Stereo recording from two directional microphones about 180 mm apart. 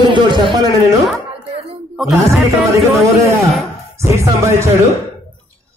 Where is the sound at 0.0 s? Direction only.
25° right (ahead or behind).